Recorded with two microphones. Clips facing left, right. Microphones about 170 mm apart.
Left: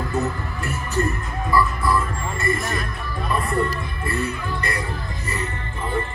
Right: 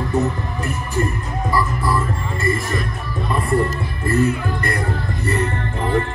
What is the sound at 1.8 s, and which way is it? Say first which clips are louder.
Music: right 1 dB; 30° right (ahead or behind).